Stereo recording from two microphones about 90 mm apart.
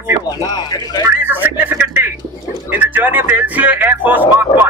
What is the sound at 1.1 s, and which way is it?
Speech, 20° right (ahead or behind).